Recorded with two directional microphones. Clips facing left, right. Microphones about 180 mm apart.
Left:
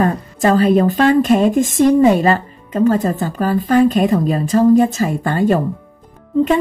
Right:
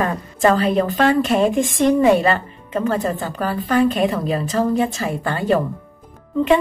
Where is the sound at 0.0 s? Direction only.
40° left (ahead or behind).